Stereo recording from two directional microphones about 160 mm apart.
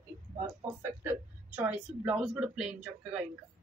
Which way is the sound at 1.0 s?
10° right (ahead or behind).